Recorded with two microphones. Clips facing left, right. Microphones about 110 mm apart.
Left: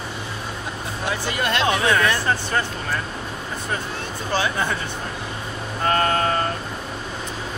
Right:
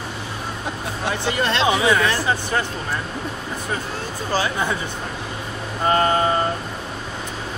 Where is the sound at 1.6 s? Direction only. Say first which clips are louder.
Right 1 dB; 10° right (ahead or behind).